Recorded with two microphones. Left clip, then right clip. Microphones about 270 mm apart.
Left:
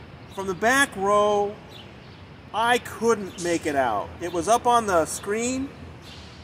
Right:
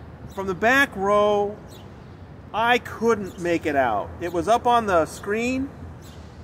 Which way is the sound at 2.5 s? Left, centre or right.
Centre.